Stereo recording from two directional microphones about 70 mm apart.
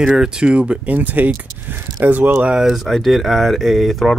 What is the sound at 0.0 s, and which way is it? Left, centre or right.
Speech, centre.